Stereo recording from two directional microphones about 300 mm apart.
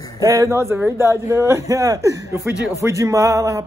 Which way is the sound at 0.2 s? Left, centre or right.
Centre.